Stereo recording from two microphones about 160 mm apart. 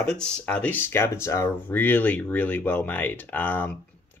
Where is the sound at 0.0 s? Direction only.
5° left (ahead or behind).